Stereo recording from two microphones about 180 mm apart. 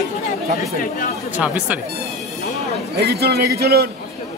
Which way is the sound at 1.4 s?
10° right (ahead or behind).